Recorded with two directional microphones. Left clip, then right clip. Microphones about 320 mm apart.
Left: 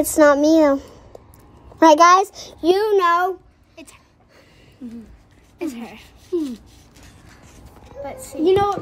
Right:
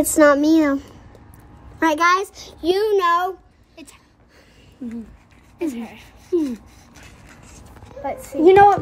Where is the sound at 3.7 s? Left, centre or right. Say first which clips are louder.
Left 1 dB; centre.